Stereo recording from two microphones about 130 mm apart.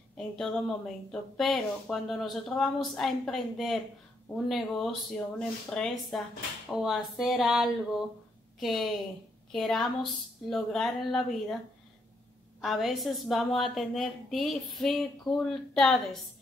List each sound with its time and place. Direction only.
0.2 s speech: 5° left (ahead or behind)
12.6 s speech: centre (ahead or behind)